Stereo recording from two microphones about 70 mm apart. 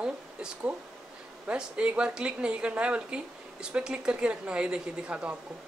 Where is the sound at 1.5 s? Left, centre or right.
Centre.